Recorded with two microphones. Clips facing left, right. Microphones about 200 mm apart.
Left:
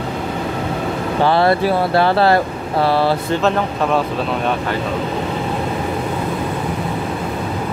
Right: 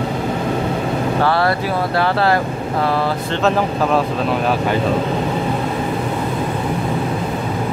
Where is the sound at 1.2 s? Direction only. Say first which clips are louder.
Left 4 dB; 20° left (ahead or behind).